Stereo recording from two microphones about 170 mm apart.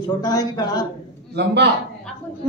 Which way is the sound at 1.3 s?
80° right.